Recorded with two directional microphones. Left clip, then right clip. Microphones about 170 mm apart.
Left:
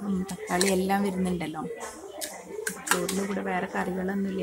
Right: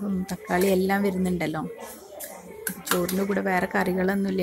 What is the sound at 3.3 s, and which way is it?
Speech, 25° right (ahead or behind).